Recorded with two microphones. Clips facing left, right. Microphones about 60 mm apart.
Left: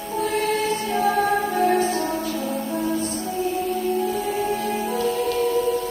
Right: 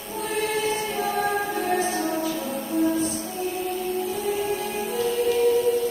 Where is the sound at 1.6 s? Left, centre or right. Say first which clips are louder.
Left 4 dB; left.